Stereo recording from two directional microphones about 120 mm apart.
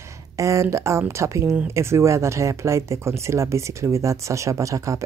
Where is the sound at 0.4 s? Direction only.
25° right (ahead or behind).